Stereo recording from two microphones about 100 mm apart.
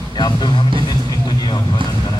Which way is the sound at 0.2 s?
50° left (ahead or behind).